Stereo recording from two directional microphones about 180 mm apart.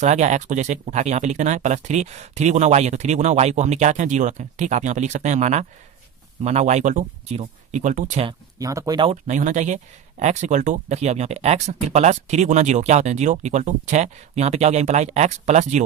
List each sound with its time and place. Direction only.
0.0 s speech: 40° right (ahead or behind)
8.3 s speech: 20° right (ahead or behind)
9.1 s speech: 40° right (ahead or behind)